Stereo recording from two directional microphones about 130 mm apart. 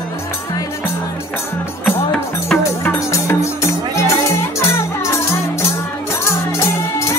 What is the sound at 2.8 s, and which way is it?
Music, 20° left (ahead or behind).